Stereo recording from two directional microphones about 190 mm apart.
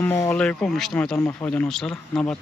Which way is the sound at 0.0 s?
10° left (ahead or behind).